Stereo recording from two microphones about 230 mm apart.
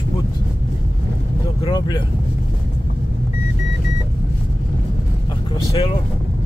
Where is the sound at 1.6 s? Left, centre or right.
Centre.